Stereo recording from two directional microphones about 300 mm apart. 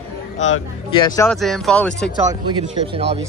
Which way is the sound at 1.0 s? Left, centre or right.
Centre.